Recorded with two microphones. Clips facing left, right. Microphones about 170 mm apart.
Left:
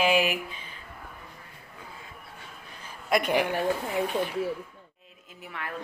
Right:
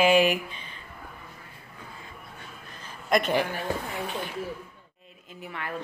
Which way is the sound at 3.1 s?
10° left (ahead or behind).